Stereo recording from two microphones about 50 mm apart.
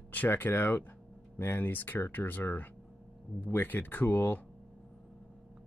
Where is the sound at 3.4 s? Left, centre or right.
Left.